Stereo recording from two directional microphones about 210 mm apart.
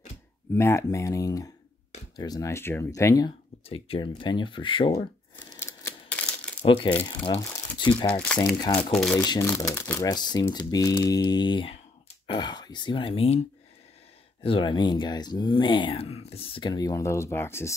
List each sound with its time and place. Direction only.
0.6 s speech: 15° left (ahead or behind)
3.6 s speech: 25° left (ahead or behind)
5.3 s a sound: 10° left (ahead or behind)
6.6 s speech: 25° left (ahead or behind)
8.1 s speech: 5° left (ahead or behind)
8.5 s speech: 20° left (ahead or behind)
8.9 s speech: 5° left (ahead or behind)
9.2 s speech: 20° left (ahead or behind)
14.4 s speech: 25° left (ahead or behind)